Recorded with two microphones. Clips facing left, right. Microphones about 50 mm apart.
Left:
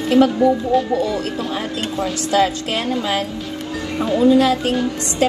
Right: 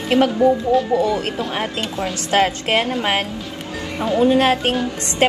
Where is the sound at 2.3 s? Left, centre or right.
Right.